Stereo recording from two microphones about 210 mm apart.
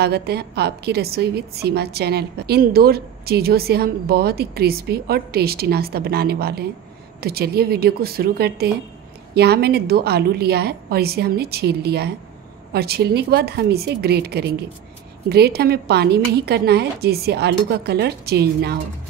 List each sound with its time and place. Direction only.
0.0 s a woman's voice: 50° right (ahead or behind)